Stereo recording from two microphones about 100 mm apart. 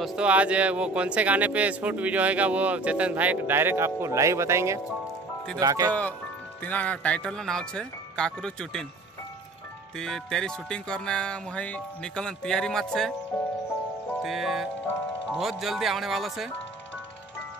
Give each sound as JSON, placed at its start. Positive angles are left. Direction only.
{"t": 0.0, "sound": "speech", "side_deg": -10}
{"t": 6.6, "sound": "music", "side_deg": 15}
{"t": 9.9, "sound": "music", "side_deg": 5}
{"t": 14.2, "sound": "speech", "side_deg": -5}